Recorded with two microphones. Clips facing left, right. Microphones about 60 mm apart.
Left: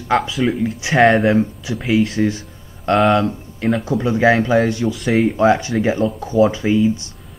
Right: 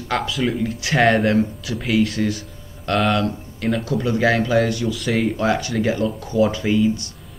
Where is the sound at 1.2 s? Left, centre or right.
Centre.